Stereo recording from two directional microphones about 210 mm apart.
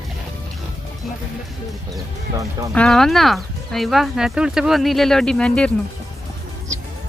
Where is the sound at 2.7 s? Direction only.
5° left (ahead or behind).